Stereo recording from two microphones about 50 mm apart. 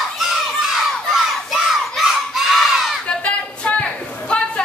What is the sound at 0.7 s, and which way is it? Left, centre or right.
Crowd, centre.